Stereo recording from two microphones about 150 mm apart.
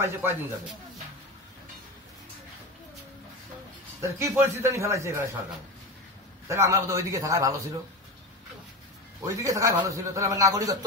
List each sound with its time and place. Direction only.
0.0 s speech: 15° right (ahead or behind)
4.2 s a man's voice: 20° right (ahead or behind)
6.4 s a man's voice: 20° right (ahead or behind)
9.2 s a man's voice: 20° right (ahead or behind)